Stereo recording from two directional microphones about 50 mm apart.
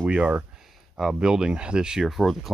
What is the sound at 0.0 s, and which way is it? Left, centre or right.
Speech, right.